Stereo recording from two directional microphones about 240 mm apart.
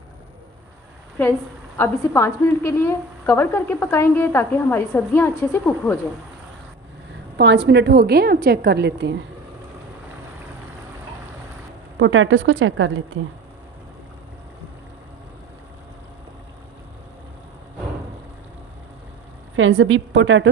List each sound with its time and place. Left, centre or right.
1.8 s a woman's voice: centre
7.3 s a woman's voice: right
12.0 s a woman's voice: right
19.5 s a woman's voice: right